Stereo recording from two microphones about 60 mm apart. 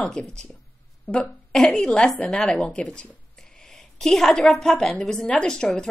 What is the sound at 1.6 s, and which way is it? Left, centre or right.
A woman's voice, centre.